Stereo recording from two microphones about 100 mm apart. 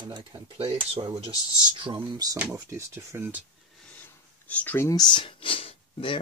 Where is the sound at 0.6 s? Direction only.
65° right (ahead or behind).